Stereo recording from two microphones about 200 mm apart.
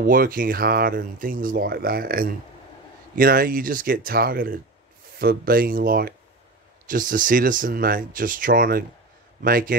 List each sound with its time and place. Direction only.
0.0 s speech: 45° right (ahead or behind)